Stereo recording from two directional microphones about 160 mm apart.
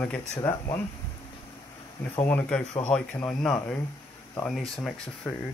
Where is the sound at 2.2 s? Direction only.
10° left (ahead or behind).